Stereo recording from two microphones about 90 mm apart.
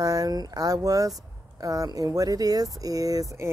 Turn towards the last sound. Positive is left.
turn(degrees=-40)  # may be behind; listen again after turning